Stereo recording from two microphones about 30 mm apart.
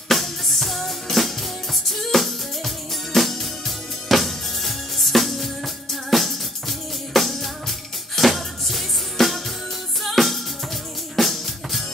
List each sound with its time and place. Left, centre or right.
0.1 s music: centre
11.1 s drum kit: centre